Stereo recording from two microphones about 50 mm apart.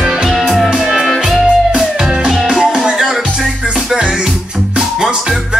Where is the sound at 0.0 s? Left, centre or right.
Centre.